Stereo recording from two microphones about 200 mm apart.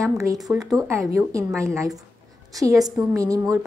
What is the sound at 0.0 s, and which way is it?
A woman's voice, 15° right (ahead or behind).